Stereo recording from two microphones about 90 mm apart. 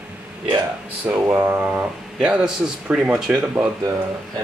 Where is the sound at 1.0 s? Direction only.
25° right (ahead or behind); by 3.6 s 10° right (ahead or behind).